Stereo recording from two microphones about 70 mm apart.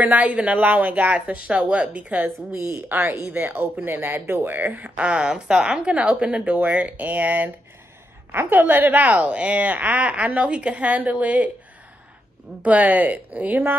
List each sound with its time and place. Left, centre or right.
0.0 s a woman's voice: right
2.5 s a woman's voice: right
4.8 s a woman's voice: centre
12.6 s a woman's voice: right